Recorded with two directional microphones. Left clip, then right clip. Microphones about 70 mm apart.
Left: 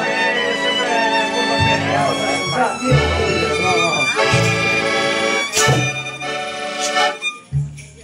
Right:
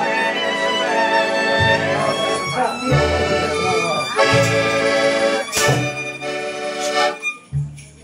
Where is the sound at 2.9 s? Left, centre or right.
Centre.